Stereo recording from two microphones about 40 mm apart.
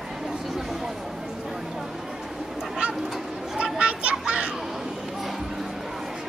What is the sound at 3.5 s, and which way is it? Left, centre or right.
Children playing, right.